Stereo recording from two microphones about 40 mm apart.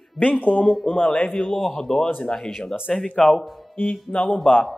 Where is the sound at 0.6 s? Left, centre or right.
Centre.